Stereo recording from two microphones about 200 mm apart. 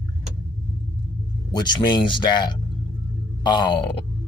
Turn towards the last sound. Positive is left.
turn(degrees=25)  # may be behind; listen again after turning